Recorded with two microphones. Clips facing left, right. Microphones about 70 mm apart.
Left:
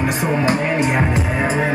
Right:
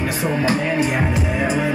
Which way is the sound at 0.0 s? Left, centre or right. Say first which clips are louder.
Left 2 dB; left.